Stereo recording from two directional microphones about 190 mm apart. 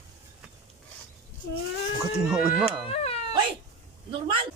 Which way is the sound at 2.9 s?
35° left (ahead or behind).